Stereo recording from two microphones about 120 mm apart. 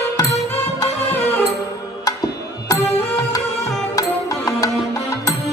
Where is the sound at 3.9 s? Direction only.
30° left (ahead or behind).